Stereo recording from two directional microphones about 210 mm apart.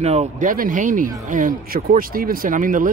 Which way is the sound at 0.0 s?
30° right (ahead or behind).